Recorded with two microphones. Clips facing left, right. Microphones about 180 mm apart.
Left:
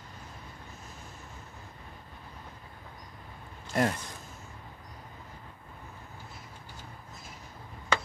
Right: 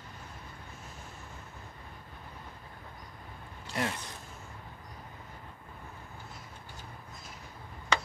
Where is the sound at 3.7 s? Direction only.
45° left (ahead or behind).